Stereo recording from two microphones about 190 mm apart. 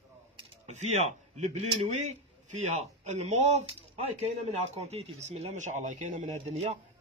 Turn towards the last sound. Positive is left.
turn(degrees=-40)  # may be behind; listen again after turning